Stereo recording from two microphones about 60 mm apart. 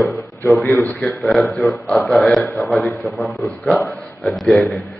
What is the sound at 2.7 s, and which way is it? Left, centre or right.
Speech, left.